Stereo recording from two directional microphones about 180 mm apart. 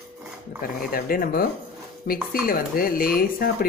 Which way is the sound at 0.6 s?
50° left (ahead or behind).